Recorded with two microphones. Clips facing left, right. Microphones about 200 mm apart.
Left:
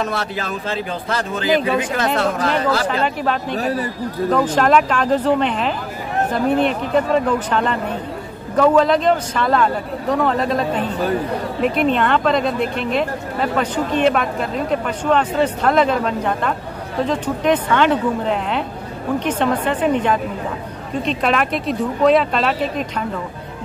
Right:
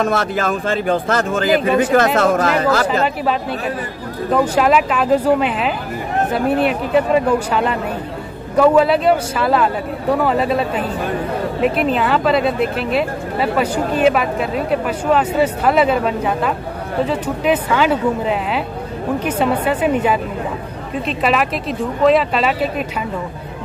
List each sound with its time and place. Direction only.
0.0 s speech: 50° right (ahead or behind)
3.5 s speech: 40° left (ahead or behind)
4.3 s speech: 5° right (ahead or behind)